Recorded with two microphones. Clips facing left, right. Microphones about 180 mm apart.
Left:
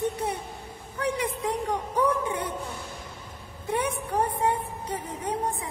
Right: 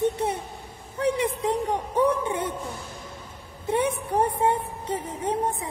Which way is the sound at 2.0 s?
25° right (ahead or behind).